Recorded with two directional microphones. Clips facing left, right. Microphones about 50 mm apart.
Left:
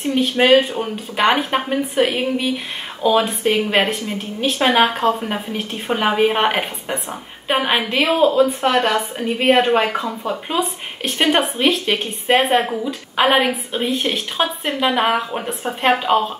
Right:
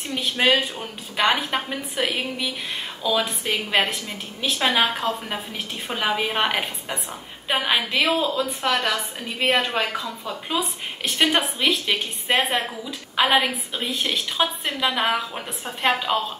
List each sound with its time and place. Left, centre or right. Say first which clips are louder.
0.4 s a woman's voice: left 6 dB; left
5.2 s a woman's voice: left 6 dB; centre